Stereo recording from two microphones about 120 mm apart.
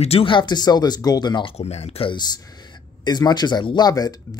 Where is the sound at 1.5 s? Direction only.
60° left (ahead or behind).